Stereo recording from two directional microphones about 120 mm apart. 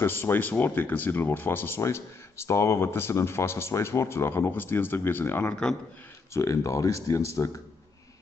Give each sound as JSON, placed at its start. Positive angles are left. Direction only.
{"t": 0.0, "sound": "speech", "side_deg": 20}